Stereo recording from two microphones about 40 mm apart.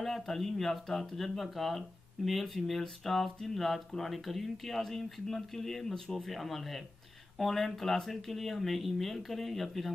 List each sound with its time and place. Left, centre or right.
0.0 s speech: centre